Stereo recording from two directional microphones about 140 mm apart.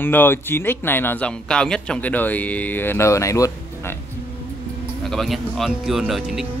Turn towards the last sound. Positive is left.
turn(degrees=-5)  # may be behind; listen again after turning